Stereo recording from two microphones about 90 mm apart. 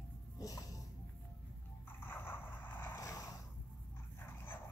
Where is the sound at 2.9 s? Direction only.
35° left (ahead or behind).